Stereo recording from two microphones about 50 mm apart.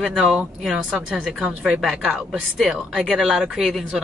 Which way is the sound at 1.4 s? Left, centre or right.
Right.